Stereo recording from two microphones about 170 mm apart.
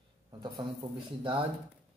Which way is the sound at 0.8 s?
30° right (ahead or behind).